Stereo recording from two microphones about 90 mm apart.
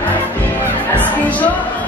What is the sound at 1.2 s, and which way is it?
Music, 15° left (ahead or behind).